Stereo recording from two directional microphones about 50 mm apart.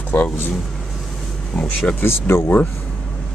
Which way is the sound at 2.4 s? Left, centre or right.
Left.